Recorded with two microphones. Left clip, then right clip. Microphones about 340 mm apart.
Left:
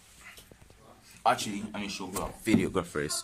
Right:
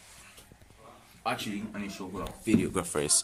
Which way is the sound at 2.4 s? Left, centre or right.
Left.